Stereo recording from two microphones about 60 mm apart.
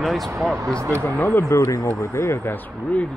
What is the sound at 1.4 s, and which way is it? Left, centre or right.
Speech, left.